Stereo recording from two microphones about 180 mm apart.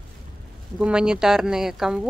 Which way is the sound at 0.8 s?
5° right (ahead or behind).